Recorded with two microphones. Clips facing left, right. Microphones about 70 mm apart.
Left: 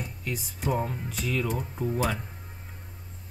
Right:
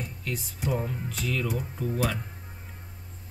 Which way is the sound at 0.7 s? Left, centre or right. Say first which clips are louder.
Left 1 dB; centre.